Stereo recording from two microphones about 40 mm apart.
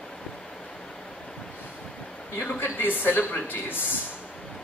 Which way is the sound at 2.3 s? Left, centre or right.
Left.